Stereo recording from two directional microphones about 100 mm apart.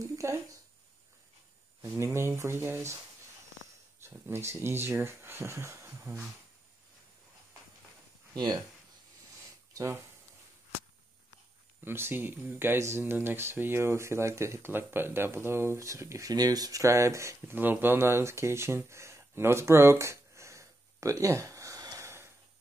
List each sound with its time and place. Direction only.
0.0 s a sound: 30° right (ahead or behind)
1.8 s speech: 30° right (ahead or behind)
4.3 s speech: 25° right (ahead or behind)
8.4 s speech: 45° right (ahead or behind)
9.8 s speech: 30° right (ahead or behind)
11.8 s speech: 20° right (ahead or behind)